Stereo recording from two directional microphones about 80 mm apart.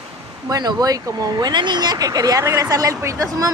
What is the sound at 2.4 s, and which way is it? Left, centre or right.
Speech, right.